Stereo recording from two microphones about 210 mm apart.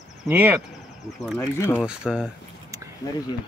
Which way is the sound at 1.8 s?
5° right (ahead or behind).